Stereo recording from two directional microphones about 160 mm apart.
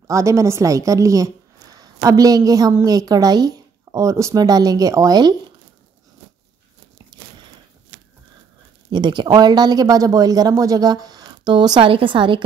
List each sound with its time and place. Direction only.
0.0 s a woman's voice: 20° right (ahead or behind)
8.9 s speech: 30° right (ahead or behind)